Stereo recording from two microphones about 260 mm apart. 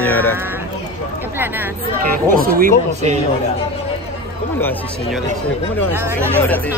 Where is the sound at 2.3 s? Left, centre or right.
Right.